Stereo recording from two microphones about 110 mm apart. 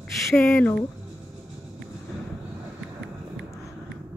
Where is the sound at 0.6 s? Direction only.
15° left (ahead or behind).